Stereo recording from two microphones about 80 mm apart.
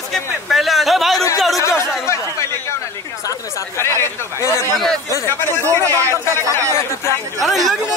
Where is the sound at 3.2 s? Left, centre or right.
Left.